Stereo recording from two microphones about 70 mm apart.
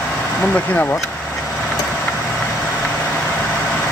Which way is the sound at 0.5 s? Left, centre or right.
Left.